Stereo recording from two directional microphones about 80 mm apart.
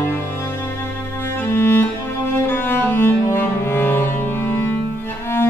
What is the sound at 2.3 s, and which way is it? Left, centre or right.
Cello, left.